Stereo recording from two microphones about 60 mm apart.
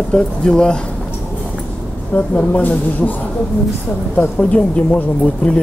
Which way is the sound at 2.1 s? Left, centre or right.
Left.